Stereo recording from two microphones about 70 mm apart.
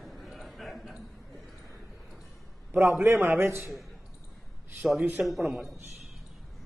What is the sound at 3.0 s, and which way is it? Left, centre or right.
Speech, right.